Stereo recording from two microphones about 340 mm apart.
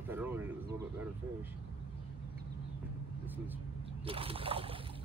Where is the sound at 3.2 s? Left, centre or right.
Centre.